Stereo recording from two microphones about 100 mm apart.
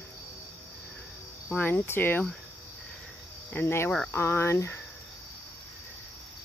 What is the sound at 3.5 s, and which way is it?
Speech, 25° left (ahead or behind).